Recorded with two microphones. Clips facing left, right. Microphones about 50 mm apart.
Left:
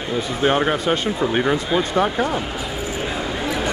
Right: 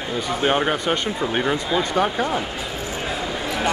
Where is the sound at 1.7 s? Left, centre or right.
Centre.